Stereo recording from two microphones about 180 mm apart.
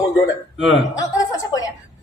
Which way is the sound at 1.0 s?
20° left (ahead or behind).